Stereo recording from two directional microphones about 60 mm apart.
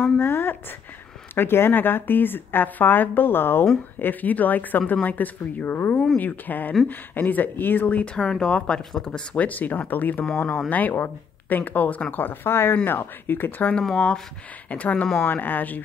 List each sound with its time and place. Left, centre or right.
0.2 s a woman's voice: left
13.7 s speech: centre
14.7 s speech: left